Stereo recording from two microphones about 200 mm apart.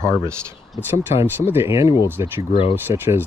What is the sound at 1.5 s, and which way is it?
Speech, 15° right (ahead or behind).